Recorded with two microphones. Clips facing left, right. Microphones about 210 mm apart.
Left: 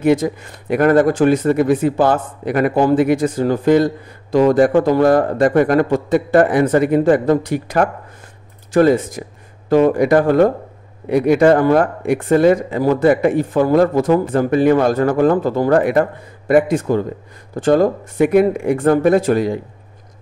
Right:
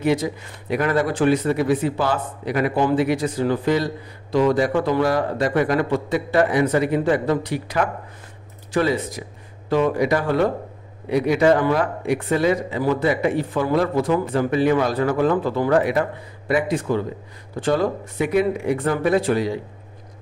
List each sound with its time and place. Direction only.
0.0 s speech: 50° left (ahead or behind)